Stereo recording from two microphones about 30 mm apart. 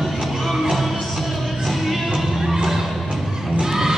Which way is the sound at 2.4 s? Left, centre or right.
Centre.